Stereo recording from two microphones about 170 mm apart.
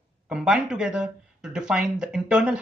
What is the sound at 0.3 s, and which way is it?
Speech, 5° right (ahead or behind).